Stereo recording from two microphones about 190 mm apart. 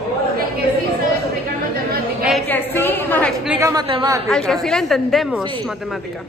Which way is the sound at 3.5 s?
15° right (ahead or behind).